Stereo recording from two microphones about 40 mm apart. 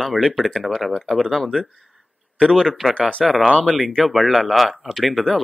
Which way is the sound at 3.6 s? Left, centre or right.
Centre.